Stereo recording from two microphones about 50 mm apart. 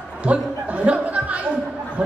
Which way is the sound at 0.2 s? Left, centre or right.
Right.